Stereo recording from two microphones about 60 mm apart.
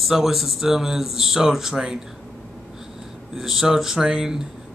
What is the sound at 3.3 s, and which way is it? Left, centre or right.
Speech, centre.